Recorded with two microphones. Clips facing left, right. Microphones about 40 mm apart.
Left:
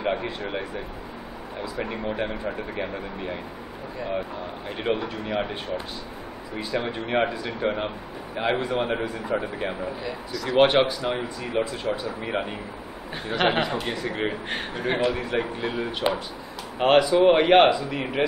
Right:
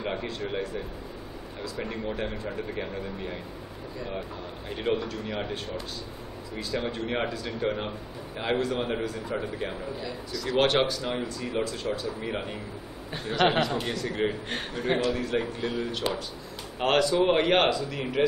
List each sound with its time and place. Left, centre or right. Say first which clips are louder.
0.0 s a man's voice: left 5 dB; centre
4.6 s a man's voice: left 1 dB; centre
10.3 s speech: left 3 dB; centre
10.6 s a man's voice: left 5 dB; centre